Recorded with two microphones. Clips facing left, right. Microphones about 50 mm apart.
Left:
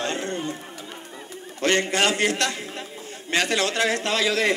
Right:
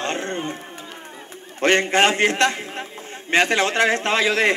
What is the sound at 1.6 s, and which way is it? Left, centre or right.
A man's voice, right.